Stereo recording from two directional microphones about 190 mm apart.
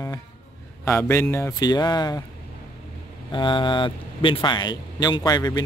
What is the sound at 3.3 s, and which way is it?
Speech, 25° left (ahead or behind).